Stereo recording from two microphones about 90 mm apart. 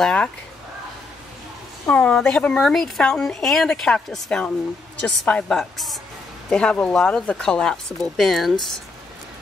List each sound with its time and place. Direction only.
0.0 s speech: 10° left (ahead or behind)
1.9 s speech: 15° left (ahead or behind)